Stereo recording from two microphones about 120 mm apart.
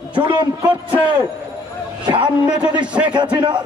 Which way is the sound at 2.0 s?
40° right (ahead or behind).